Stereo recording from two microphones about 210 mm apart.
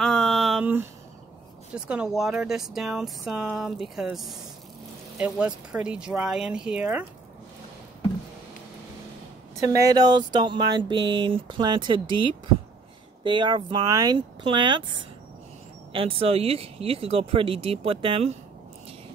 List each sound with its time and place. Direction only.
0.0 s a sound: centre (ahead or behind)
1.9 s speech: 5° right (ahead or behind)
9.8 s speech: 20° right (ahead or behind)